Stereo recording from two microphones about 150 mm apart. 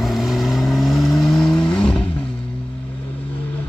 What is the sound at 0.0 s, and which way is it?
Vehicle, centre (ahead or behind).